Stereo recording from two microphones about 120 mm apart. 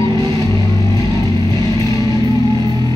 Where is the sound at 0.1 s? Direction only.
40° right (ahead or behind).